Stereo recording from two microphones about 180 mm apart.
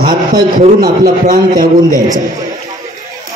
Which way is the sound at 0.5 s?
55° right (ahead or behind).